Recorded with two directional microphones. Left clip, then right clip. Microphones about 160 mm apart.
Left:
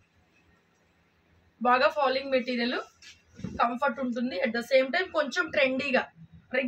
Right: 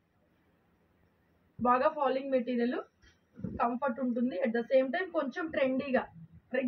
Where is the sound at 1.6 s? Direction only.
20° left (ahead or behind).